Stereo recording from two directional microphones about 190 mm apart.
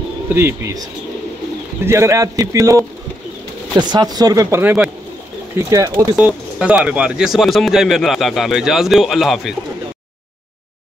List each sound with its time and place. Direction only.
0.3 s a man's voice: 10° right (ahead or behind)
1.9 s a man's voice: 15° right (ahead or behind)
6.1 s speech: 5° right (ahead or behind)